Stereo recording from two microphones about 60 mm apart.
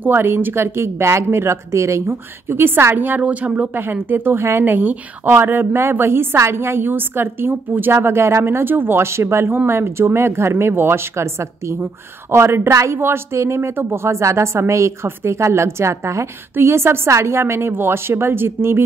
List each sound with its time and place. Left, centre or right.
0.0 s speech: right
3.2 s a woman's voice: right